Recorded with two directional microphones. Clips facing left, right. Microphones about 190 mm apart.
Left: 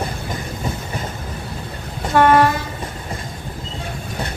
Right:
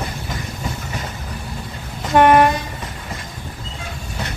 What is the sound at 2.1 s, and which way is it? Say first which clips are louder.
Train: right 1 dB; 20° right (ahead or behind).